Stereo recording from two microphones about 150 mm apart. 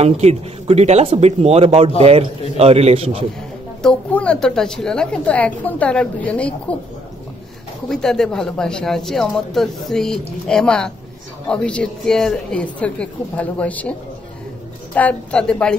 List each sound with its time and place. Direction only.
0.0 s a man's voice: 45° right (ahead or behind)
3.8 s a woman's voice: 10° left (ahead or behind)
7.9 s a woman's voice: 5° left (ahead or behind)
15.0 s a woman's voice: 10° left (ahead or behind)